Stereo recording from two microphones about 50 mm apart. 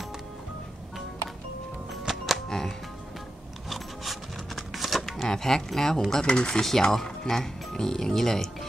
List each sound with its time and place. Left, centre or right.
2.0 s music: centre
3.7 s a sound: centre
6.2 s speech: centre
6.6 s speech: centre